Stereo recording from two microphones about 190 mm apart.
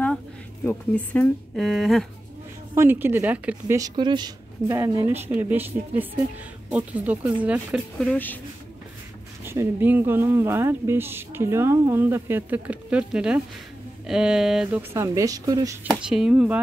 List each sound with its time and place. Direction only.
0.7 s speech: 10° left (ahead or behind)
2.7 s speech: 10° right (ahead or behind)
6.7 s speech: 5° right (ahead or behind)
9.4 s speech: 10° right (ahead or behind)
15.0 s speech: 15° right (ahead or behind)
15.9 s speech: 5° right (ahead or behind)